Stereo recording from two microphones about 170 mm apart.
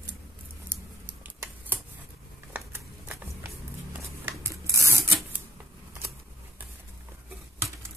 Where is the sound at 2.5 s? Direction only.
10° right (ahead or behind).